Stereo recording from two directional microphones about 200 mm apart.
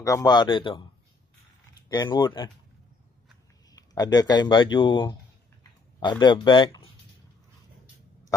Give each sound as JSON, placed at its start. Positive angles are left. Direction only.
{"t": 0.0, "sound": "speech", "side_deg": 15}
{"t": 1.9, "sound": "speech", "side_deg": 20}
{"t": 3.7, "sound": "speech", "side_deg": 20}